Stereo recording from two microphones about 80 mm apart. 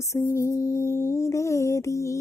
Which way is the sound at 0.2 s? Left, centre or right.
Left.